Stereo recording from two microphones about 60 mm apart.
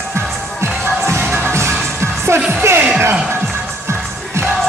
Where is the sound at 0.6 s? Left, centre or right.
Right.